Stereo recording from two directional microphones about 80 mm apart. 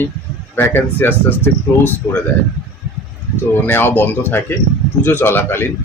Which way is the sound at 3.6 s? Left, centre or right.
Left.